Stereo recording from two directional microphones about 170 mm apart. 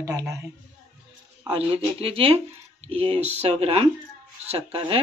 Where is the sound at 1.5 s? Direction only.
35° right (ahead or behind).